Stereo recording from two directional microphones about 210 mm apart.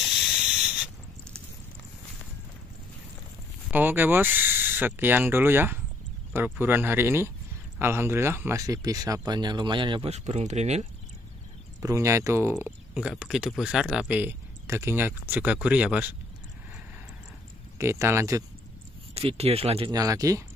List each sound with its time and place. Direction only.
0.0 s a sound: centre (ahead or behind)
3.7 s speech: 10° right (ahead or behind); by 10.9 s 30° right (ahead or behind)
11.8 s speech: 15° right (ahead or behind)
17.7 s speech: 15° right (ahead or behind)
19.1 s speech: 30° right (ahead or behind)